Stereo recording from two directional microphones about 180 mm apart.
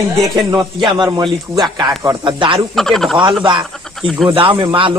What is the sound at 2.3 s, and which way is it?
Speech, 30° right (ahead or behind).